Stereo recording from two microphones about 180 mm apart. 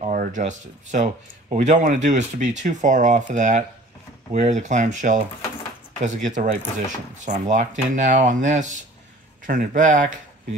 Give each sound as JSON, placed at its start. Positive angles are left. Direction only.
{"t": 0.0, "sound": "speech", "side_deg": -45}